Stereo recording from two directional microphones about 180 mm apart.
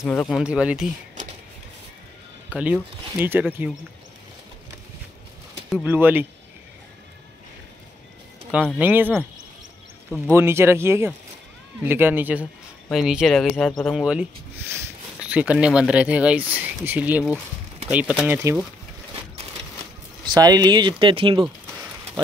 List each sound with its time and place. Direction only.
0.0 s speech: 15° left (ahead or behind)
0.3 s speech: 5° right (ahead or behind)
2.5 s speech: 10° right (ahead or behind)
5.9 s speech: 10° right (ahead or behind)
8.7 s speech: 10° right (ahead or behind)
10.3 s speech: 15° right (ahead or behind)
20.3 s speech: 20° right (ahead or behind)